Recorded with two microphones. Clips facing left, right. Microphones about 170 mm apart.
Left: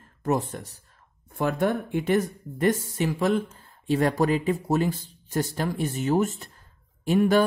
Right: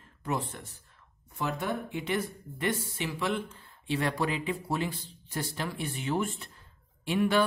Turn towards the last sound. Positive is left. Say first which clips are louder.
# left 6 dB
turn(degrees=45)  # may be behind; listen again after turning